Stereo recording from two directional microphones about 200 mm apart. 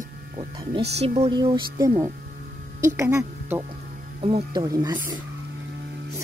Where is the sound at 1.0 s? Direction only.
30° right (ahead or behind).